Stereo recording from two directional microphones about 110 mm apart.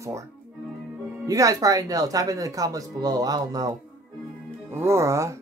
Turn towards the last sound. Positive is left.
turn(degrees=-25)  # may be behind; listen again after turning